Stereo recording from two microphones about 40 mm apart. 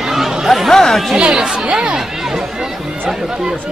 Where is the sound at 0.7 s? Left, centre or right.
Centre.